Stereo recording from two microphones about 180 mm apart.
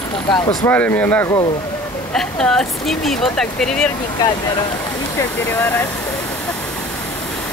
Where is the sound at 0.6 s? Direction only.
10° left (ahead or behind).